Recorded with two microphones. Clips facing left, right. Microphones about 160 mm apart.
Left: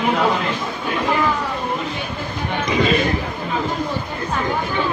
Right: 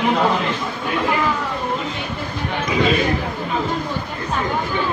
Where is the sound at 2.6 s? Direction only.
5° right (ahead or behind).